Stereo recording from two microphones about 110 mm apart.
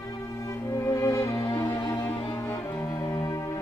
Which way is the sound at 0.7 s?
25° left (ahead or behind).